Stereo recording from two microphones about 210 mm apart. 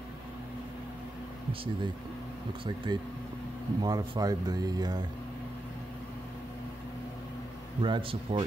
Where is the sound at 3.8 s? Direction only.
20° right (ahead or behind).